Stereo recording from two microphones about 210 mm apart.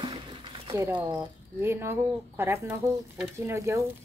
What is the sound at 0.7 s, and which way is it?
Speech, 10° right (ahead or behind).